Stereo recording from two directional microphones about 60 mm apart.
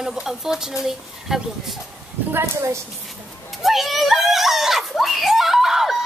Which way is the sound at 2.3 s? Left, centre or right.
Right.